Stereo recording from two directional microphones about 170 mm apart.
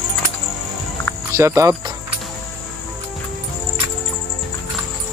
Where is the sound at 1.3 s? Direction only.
15° right (ahead or behind).